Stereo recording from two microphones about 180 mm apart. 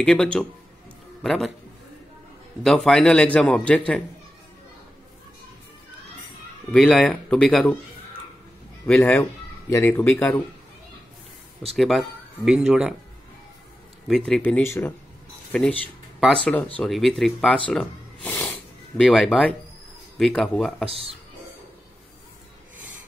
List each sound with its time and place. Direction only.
0.0 s a man's voice: 5° left (ahead or behind)
2.6 s a man's voice: 5° left (ahead or behind)
6.7 s a man's voice: 5° left (ahead or behind)
8.8 s a man's voice: 10° left (ahead or behind)
11.7 s a man's voice: centre (ahead or behind)
14.0 s a man's voice: centre (ahead or behind)
17.6 s a sound: 10° left (ahead or behind)
20.2 s a man's voice: 5° left (ahead or behind)
20.9 s speech: 35° right (ahead or behind)